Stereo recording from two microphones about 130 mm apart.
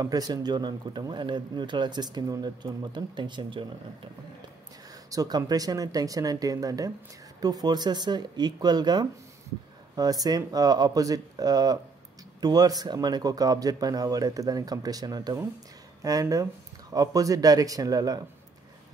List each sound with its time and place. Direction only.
0.0 s speech: 30° right (ahead or behind)
5.1 s a man's voice: 30° right (ahead or behind)